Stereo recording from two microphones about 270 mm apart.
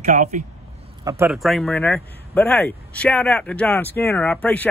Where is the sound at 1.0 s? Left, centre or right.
Centre.